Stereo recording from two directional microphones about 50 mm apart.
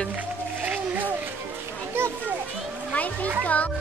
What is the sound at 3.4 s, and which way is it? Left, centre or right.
Speech, left.